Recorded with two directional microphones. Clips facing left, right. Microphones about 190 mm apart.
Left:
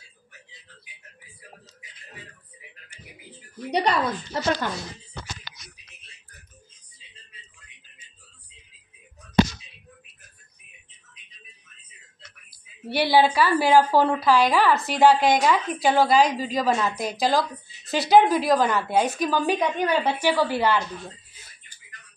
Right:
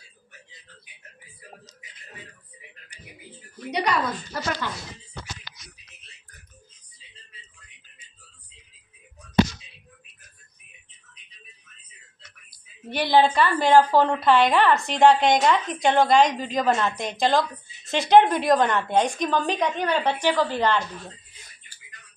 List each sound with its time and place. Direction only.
3.7 s speech: 30° left (ahead or behind)
12.4 s a woman's voice: 10° left (ahead or behind)